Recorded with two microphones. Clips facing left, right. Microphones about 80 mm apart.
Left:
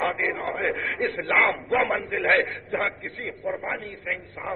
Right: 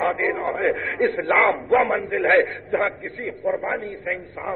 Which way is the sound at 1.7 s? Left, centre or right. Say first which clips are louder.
Right 5 dB; centre.